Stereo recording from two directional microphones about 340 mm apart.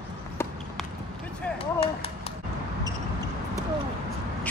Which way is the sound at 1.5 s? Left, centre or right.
Centre.